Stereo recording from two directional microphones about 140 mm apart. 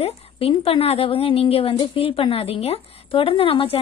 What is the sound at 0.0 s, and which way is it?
A woman's voice, 45° left (ahead or behind).